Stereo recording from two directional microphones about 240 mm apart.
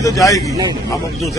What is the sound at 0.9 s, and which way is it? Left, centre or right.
Speech, centre.